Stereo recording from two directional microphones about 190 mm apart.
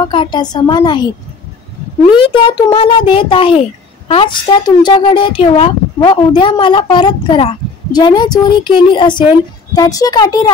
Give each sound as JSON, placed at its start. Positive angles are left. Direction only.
{"t": 0.1, "sound": "speech", "side_deg": 25}